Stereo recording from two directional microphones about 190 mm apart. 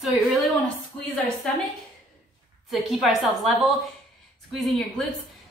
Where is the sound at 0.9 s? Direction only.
5° left (ahead or behind).